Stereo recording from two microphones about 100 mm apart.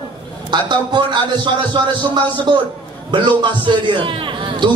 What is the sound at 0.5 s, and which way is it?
A man's voice, 50° right (ahead or behind).